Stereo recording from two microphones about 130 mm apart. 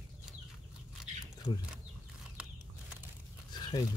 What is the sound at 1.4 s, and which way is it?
Speech, 45° left (ahead or behind).